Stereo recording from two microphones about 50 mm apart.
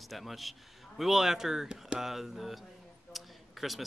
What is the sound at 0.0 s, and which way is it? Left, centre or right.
Speech, centre.